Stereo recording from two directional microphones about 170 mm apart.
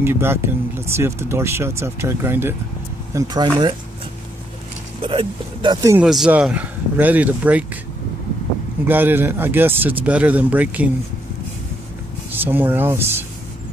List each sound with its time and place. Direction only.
0.0 s speech: 15° right (ahead or behind)
3.2 s speech: 25° right (ahead or behind)
5.0 s speech: 30° right (ahead or behind)
6.0 s speech: 5° right (ahead or behind)
8.8 s speech: 10° right (ahead or behind)
12.4 s speech: 10° right (ahead or behind)